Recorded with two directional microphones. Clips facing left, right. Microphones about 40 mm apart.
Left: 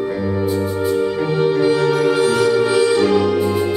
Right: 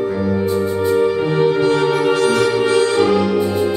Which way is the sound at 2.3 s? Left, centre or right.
Right.